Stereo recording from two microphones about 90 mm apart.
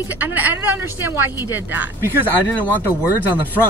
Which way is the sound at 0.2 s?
20° right (ahead or behind).